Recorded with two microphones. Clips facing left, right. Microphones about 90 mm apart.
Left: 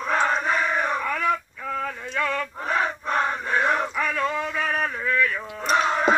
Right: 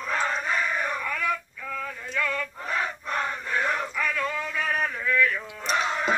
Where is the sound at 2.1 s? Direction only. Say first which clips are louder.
Left 3 dB; 35° left (ahead or behind).